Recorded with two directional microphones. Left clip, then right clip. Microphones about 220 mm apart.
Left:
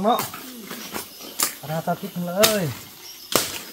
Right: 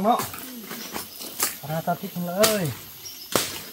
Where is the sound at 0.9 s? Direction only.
35° left (ahead or behind).